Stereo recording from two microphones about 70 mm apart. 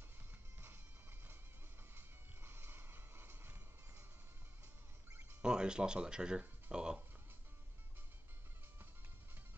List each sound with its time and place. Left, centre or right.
2.0 s music: right
5.4 s speech: centre